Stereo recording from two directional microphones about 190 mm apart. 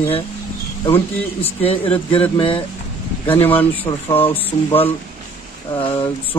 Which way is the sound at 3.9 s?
10° left (ahead or behind).